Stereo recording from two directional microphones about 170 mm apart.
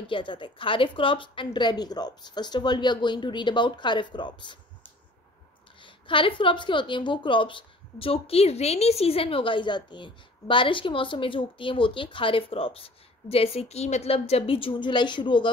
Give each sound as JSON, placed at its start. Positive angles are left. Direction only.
{"t": 0.1, "sound": "a woman's voice", "side_deg": 30}
{"t": 5.8, "sound": "a woman's voice", "side_deg": 30}